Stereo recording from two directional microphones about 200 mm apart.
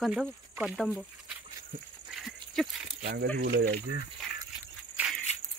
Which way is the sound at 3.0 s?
50° right (ahead or behind).